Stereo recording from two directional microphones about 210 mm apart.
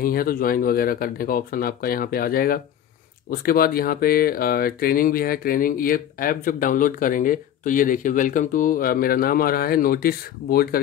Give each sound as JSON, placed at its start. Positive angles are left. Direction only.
{"t": 0.0, "sound": "speech", "side_deg": 45}